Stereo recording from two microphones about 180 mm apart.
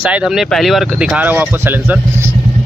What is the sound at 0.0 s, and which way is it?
Speech, 5° right (ahead or behind).